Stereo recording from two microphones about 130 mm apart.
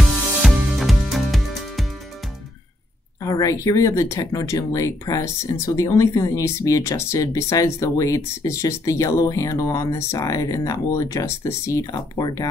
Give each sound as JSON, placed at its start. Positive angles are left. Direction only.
{"t": 0.4, "sound": "music", "side_deg": 0}
{"t": 3.2, "sound": "speech", "side_deg": 25}